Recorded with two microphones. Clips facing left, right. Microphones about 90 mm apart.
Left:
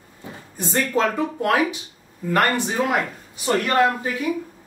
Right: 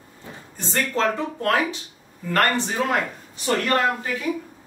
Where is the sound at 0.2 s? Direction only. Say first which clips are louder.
Left 5 dB; 10° left (ahead or behind).